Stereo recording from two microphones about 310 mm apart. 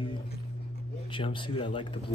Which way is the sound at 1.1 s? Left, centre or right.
Centre.